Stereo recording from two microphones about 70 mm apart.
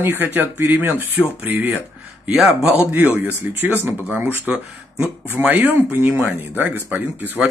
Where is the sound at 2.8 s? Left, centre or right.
Right.